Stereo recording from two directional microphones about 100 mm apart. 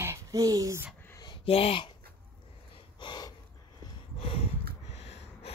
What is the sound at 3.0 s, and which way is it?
Gasp, 50° left (ahead or behind).